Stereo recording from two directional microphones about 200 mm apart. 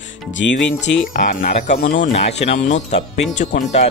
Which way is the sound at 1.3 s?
40° left (ahead or behind).